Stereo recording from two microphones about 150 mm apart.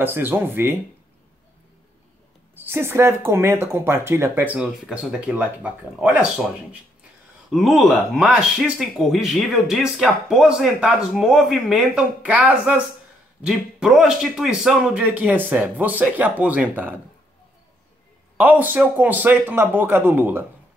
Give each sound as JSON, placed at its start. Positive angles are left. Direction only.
{"t": 0.0, "sound": "speech", "side_deg": -15}
{"t": 2.5, "sound": "speech", "side_deg": -15}
{"t": 7.5, "sound": "speech", "side_deg": 0}
{"t": 18.4, "sound": "speech", "side_deg": -10}